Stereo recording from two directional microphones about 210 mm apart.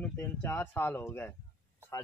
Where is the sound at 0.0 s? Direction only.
10° left (ahead or behind).